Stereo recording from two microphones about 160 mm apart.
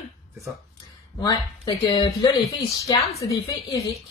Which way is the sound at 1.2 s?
30° left (ahead or behind).